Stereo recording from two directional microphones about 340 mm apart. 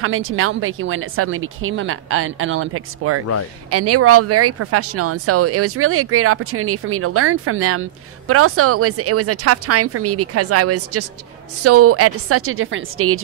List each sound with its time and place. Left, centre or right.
0.0 s speech: right